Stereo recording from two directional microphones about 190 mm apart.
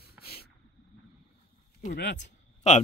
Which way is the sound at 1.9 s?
65° left (ahead or behind).